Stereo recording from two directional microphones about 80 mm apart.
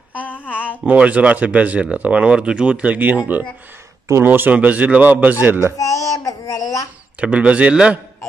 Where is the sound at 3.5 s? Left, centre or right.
Right.